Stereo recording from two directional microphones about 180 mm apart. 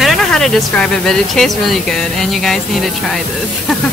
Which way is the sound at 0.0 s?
Centre (ahead or behind).